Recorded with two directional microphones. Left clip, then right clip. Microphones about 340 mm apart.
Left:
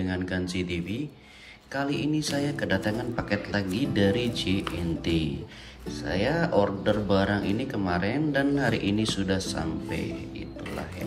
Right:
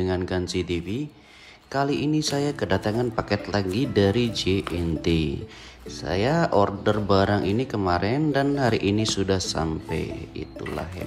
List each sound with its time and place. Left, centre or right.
0.1 s speech: centre